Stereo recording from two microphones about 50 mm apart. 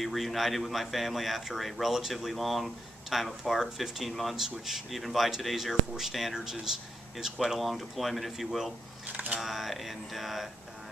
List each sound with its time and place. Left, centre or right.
0.0 s speech: centre
9.0 s speech: right
9.4 s speech: centre